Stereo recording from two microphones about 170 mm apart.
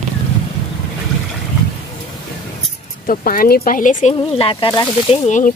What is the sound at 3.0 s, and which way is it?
Speech, 55° left (ahead or behind).